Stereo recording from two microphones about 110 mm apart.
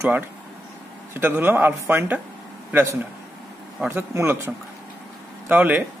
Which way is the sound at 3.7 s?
15° right (ahead or behind).